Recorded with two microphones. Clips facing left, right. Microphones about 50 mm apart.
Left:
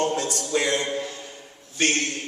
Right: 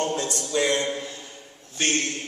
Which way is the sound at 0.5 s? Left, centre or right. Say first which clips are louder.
Right 1 dB; left.